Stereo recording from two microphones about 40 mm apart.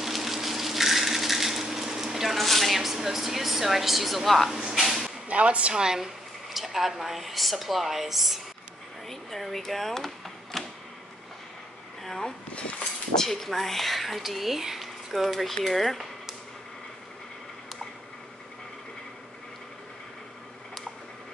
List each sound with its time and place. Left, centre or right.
0.0 s a sound: centre
4.5 s a sound: centre
5.3 s speech: right
5.8 s speech: centre
6.5 s speech: centre
9.1 s speech: centre
13.1 s speech: centre